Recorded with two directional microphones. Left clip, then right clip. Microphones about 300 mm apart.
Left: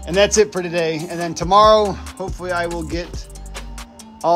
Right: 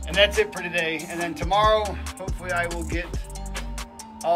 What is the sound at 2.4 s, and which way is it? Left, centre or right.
Speech, centre.